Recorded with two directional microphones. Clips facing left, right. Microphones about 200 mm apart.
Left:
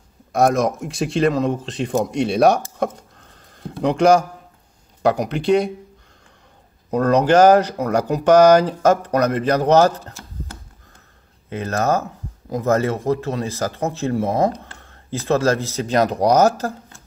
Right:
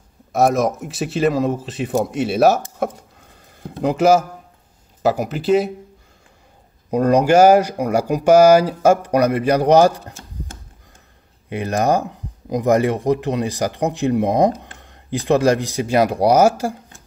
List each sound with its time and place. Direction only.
0.3 s speech: centre (ahead or behind)
2.8 s a sound: 10° right (ahead or behind)
5.0 s speech: 5° right (ahead or behind)
6.9 s speech: 10° right (ahead or behind)
11.4 s speech: 15° right (ahead or behind)